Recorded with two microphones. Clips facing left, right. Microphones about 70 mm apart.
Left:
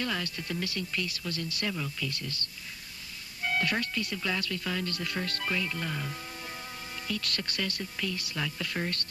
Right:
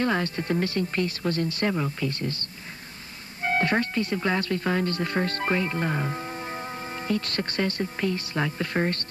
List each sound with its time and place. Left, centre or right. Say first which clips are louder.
0.0 s speech: right 8 dB; right
3.4 s speech: right 6 dB; right